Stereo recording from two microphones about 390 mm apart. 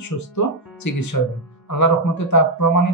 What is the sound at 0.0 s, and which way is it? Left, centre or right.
Speech, left.